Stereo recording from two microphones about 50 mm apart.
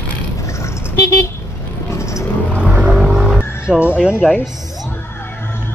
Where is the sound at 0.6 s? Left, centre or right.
Left.